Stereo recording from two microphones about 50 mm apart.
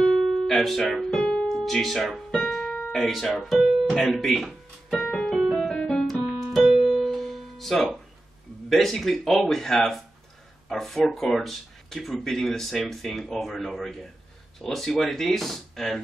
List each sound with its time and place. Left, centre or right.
0.2 s music: centre
1.1 s piano: centre
1.6 s speech: centre
4.9 s keyboard: left
5.4 s music: centre
5.7 s keyboard: centre
6.5 s keyboard: centre
8.6 s speech: centre